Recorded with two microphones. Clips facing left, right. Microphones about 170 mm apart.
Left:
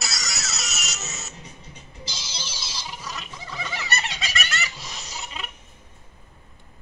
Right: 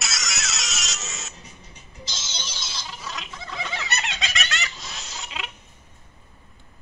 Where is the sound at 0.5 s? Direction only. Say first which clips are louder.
Even; centre (ahead or behind).